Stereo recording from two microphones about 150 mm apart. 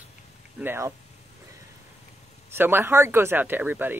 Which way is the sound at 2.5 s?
15° right (ahead or behind).